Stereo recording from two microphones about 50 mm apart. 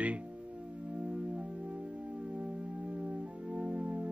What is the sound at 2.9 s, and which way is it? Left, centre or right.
Music, right.